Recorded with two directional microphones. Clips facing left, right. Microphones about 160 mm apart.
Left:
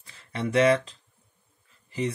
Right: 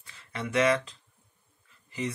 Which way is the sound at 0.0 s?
30° left (ahead or behind).